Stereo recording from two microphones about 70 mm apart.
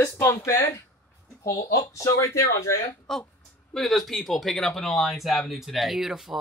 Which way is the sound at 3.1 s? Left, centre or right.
Centre.